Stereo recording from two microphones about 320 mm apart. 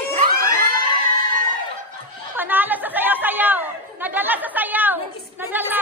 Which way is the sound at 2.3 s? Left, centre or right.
Centre.